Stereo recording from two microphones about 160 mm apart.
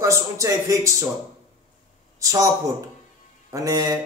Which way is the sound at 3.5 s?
20° right (ahead or behind).